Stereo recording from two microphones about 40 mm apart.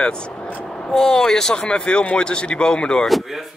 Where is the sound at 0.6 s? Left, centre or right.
Centre.